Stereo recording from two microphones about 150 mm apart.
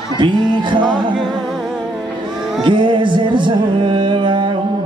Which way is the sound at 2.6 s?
30° right (ahead or behind).